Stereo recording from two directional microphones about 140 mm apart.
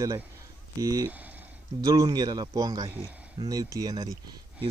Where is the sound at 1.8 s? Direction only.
25° right (ahead or behind).